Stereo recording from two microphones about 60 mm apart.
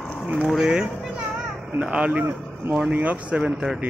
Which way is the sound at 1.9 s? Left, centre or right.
Centre.